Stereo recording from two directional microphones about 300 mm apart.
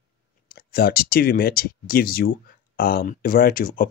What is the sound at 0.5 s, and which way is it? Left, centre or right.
Speech, left.